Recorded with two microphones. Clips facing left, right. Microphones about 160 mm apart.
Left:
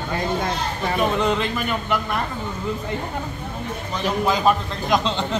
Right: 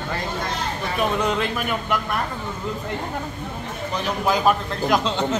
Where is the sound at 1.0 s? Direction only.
Centre (ahead or behind).